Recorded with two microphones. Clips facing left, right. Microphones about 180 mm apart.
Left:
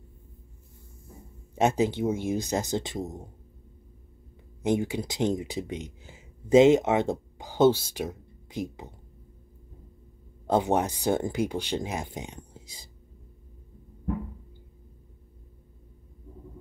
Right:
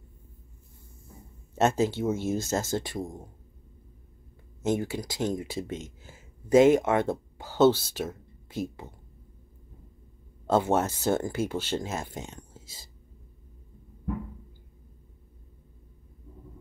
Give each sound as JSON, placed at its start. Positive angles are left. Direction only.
{"t": 1.5, "sound": "speech", "side_deg": 15}
{"t": 4.6, "sound": "speech", "side_deg": 15}
{"t": 10.4, "sound": "speech", "side_deg": 15}